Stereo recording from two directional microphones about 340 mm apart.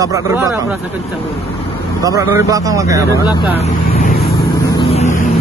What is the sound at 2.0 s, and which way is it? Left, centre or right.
Speech, centre.